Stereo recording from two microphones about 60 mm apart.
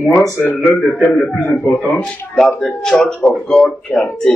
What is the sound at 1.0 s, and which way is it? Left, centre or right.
Speech, centre.